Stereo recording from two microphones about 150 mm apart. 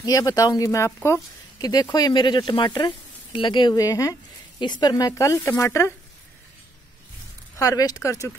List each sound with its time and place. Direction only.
0.0 s speech: 25° left (ahead or behind)
7.5 s speech: 25° left (ahead or behind)